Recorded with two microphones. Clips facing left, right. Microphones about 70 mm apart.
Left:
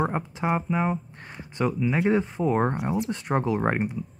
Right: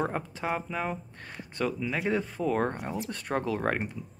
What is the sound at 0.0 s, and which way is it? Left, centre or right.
Speech, centre.